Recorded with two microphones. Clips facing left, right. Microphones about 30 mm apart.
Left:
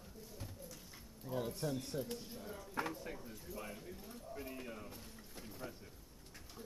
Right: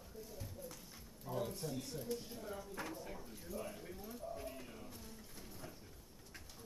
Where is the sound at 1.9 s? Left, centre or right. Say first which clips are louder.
Left 5 dB; left.